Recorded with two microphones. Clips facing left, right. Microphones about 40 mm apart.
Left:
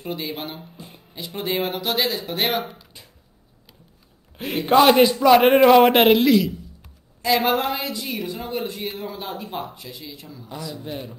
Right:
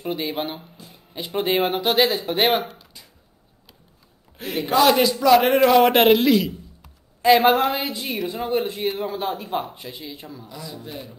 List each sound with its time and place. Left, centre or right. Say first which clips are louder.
0.0 s a man's voice: right 3 dB; centre
0.7 s music: left 3 dB; left
1.1 s speech: right 4 dB; right
4.6 s a man's voice: left 3 dB; left
4.9 s a man's voice: left 2 dB; centre
5.9 s a man's voice: even; centre
7.2 s a sound: right 5 dB; right
7.4 s a man's voice: right 4 dB; centre
7.8 s a man's voice: right 1 dB; right
10.8 s a man's voice: left 3 dB; left